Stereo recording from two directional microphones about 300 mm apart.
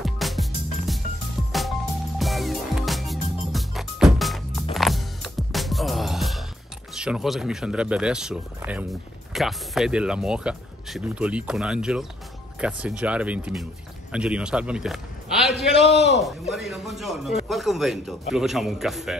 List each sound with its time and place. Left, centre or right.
0.0 s music: centre
2.1 s music: centre
7.0 s a man's voice: centre
15.8 s a man's voice: left
16.2 s speech: centre